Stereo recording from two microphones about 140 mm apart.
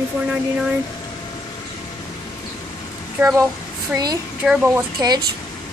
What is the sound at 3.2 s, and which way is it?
Speech, 15° right (ahead or behind).